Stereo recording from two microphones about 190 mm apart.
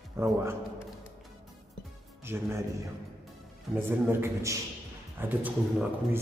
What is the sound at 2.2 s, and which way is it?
Speech, 15° right (ahead or behind).